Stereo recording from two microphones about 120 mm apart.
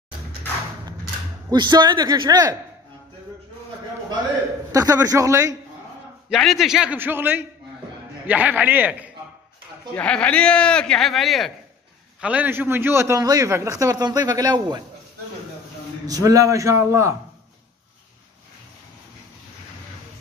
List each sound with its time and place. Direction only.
1.5 s a man's voice: 35° right (ahead or behind)
4.7 s a man's voice: 30° right (ahead or behind)
6.3 s a man's voice: centre (ahead or behind)
7.0 s a man's voice: 15° right (ahead or behind)
9.9 s a man's voice: 10° left (ahead or behind)
12.2 s a man's voice: 10° right (ahead or behind); by 14.8 s 35° right (ahead or behind)
16.1 s a man's voice: 30° right (ahead or behind)